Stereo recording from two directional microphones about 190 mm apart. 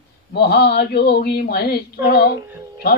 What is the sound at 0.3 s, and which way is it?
Speech, 60° left (ahead or behind).